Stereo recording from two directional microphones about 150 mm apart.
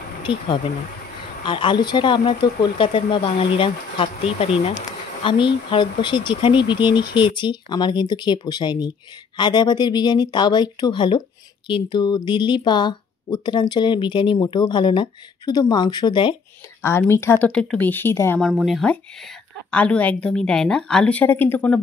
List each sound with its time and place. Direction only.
0.2 s speech: 35° left (ahead or behind)
16.8 s a woman's voice: 15° left (ahead or behind)
18.4 s speech: 5° right (ahead or behind)
19.7 s a woman's voice: 10° left (ahead or behind)